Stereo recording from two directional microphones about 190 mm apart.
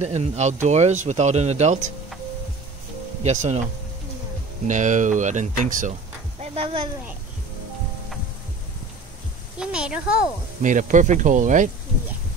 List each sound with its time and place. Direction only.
0.0 s speech: 35° right (ahead or behind)
3.3 s speech: 35° right (ahead or behind)
4.6 s speech: 40° right (ahead or behind)
6.4 s speech: 30° right (ahead or behind)
9.6 s a child's voice: 5° right (ahead or behind)
10.6 s speech: 40° right (ahead or behind)